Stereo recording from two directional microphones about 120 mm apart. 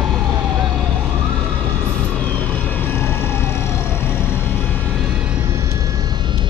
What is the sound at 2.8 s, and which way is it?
Emergency vehicle, 20° left (ahead or behind).